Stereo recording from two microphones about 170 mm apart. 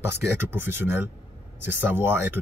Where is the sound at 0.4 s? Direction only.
15° right (ahead or behind).